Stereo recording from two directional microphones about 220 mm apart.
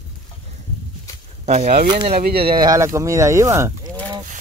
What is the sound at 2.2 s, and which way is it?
Speech, 45° right (ahead or behind).